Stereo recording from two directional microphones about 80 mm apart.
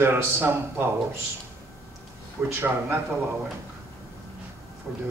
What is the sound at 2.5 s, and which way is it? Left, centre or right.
Speech, right.